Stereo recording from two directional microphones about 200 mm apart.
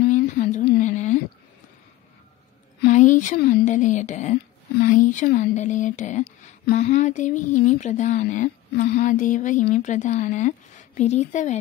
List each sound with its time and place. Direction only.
0.0 s a sound: 45° left (ahead or behind)
2.9 s speech: 40° left (ahead or behind)
6.2 s speech: 50° left (ahead or behind)
6.8 s speech: 35° left (ahead or behind)